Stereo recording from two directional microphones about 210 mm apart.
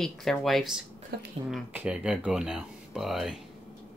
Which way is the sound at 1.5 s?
5° right (ahead or behind).